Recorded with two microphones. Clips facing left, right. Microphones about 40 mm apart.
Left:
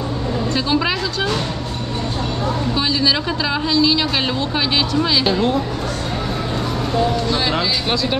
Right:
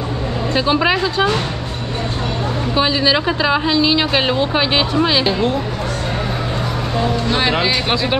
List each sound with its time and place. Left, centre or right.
0.6 s speech: centre
2.7 s speech: right
7.2 s speech: right